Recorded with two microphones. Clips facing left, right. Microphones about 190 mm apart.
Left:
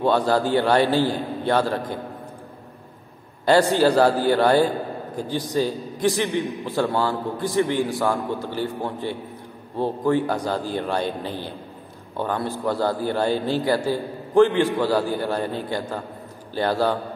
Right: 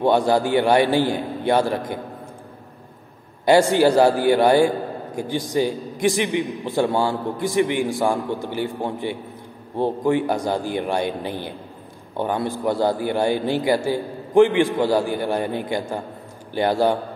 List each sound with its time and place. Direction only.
0.0 s a man's voice: 15° right (ahead or behind)
3.4 s a man's voice: 10° right (ahead or behind)